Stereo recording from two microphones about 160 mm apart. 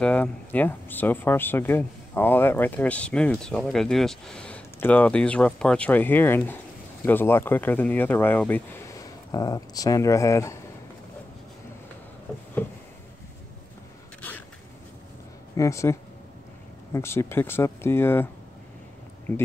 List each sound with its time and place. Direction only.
0.0 s speech: 10° left (ahead or behind)
12.6 s a sound: 15° left (ahead or behind)
15.5 s speech: 20° left (ahead or behind)